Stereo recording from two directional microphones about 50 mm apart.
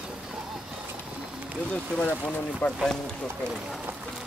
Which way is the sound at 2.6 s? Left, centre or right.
Left.